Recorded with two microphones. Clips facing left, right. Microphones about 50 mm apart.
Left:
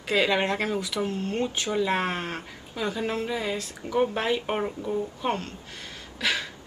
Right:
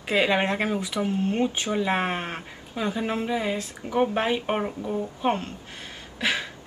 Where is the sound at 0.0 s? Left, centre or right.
Centre.